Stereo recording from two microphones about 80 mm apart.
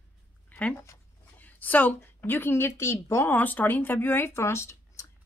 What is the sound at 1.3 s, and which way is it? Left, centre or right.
A woman's voice, left.